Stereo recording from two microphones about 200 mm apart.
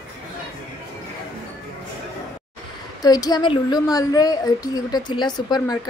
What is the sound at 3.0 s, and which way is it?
Speech, 20° left (ahead or behind).